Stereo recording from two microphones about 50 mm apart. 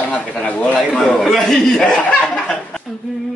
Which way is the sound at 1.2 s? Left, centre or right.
Centre.